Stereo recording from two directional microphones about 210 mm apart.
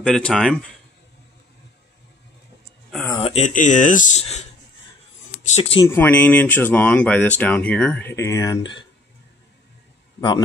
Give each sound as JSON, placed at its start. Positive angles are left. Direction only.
{"t": 0.0, "sound": "speech", "side_deg": 5}
{"t": 3.2, "sound": "speech", "side_deg": 30}
{"t": 5.5, "sound": "speech", "side_deg": 25}
{"t": 5.9, "sound": "speech", "side_deg": 10}